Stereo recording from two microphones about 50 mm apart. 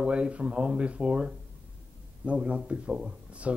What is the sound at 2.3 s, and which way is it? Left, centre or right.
Speech, right.